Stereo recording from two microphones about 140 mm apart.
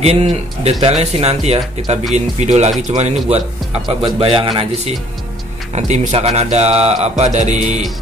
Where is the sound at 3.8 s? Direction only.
40° right (ahead or behind).